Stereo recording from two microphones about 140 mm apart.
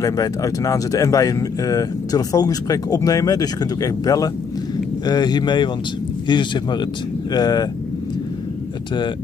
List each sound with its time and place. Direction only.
0.0 s speech: 25° left (ahead or behind)